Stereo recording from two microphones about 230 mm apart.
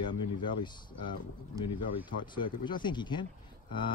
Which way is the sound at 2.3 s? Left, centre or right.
Centre.